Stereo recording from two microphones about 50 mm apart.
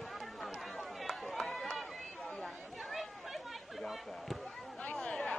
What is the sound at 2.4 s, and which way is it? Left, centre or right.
Chatter, centre.